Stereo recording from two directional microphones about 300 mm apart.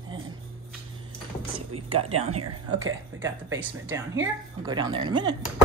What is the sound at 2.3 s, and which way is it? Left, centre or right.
Speech, right.